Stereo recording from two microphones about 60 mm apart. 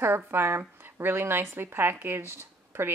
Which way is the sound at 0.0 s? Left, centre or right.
Right.